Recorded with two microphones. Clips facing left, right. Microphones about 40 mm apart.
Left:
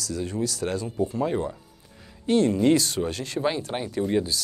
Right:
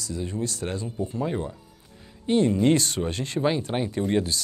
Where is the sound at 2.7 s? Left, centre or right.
Right.